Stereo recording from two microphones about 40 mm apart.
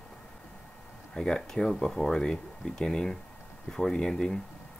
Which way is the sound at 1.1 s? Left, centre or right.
Centre.